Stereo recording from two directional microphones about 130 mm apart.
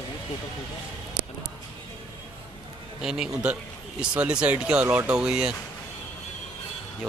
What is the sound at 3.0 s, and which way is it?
A man's voice, 5° right (ahead or behind).